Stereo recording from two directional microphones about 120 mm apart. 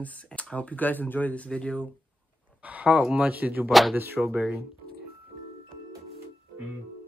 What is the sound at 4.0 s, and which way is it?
Speech, 15° right (ahead or behind).